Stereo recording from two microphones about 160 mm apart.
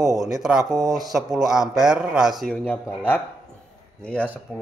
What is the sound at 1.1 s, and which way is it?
Speech, centre (ahead or behind).